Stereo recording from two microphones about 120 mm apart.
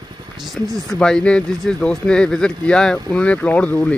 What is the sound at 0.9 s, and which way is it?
Speech, 10° left (ahead or behind).